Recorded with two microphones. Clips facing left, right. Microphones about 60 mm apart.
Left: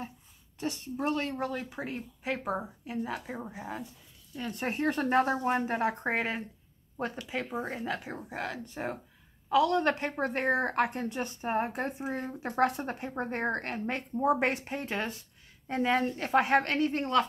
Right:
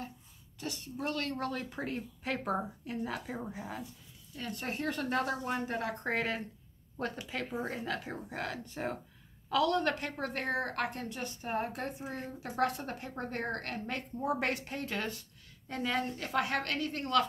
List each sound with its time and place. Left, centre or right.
0.6 s speech: left; by 3.8 s centre
4.5 s speech: left; by 8.9 s centre
9.5 s speech: centre